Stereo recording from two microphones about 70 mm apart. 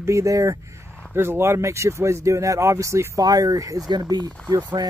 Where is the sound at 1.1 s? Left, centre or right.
Right.